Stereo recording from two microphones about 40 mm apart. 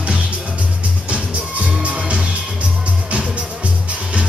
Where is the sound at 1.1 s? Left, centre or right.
Right.